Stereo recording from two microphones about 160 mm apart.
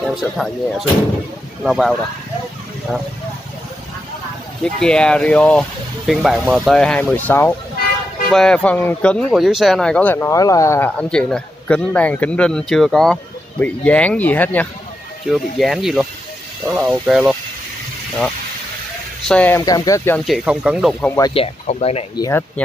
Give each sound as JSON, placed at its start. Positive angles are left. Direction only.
{"t": 0.1, "sound": "speech", "side_deg": 0}
{"t": 4.7, "sound": "speech", "side_deg": 5}
{"t": 9.3, "sound": "speech", "side_deg": 0}
{"t": 15.2, "sound": "speech", "side_deg": 0}
{"t": 16.6, "sound": "speech", "side_deg": -15}
{"t": 17.1, "sound": "speech", "side_deg": -5}
{"t": 19.2, "sound": "speech", "side_deg": 10}
{"t": 19.6, "sound": "speech", "side_deg": 25}
{"t": 20.2, "sound": "speech", "side_deg": -5}
{"t": 21.2, "sound": "speech", "side_deg": 35}
{"t": 22.1, "sound": "speech", "side_deg": 25}